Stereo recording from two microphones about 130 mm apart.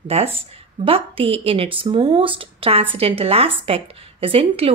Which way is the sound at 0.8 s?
45° right (ahead or behind).